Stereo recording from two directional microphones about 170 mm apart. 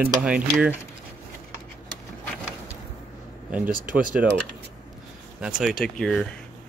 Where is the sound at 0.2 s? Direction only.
5° right (ahead or behind).